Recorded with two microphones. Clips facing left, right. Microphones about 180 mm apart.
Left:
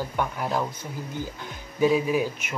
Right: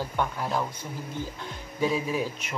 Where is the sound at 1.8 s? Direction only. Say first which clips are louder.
Left 5 dB; 5° left (ahead or behind).